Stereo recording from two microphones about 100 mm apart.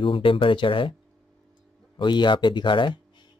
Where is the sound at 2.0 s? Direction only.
50° left (ahead or behind).